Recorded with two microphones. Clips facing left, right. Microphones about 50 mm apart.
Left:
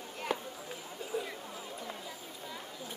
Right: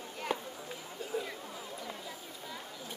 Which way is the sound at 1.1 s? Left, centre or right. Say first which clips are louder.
Even; centre.